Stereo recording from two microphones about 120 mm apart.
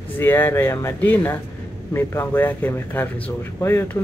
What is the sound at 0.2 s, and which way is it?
Speech, 15° left (ahead or behind).